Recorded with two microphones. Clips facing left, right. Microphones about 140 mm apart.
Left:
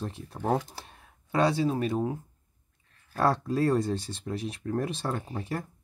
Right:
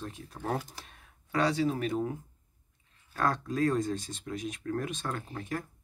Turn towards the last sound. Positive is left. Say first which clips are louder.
# left 2 dB
turn(degrees=30)  # may be behind; listen again after turning